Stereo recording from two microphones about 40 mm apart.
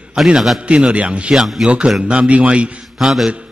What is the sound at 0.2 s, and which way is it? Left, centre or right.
Speech, centre.